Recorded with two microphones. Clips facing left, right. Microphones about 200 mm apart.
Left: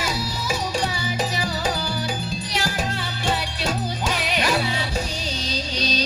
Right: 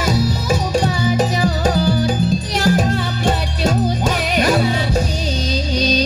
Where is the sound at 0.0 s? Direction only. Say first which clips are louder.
Right 9 dB; 45° right (ahead or behind).